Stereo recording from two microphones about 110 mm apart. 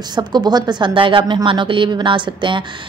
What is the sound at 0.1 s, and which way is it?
Speech, 40° right (ahead or behind).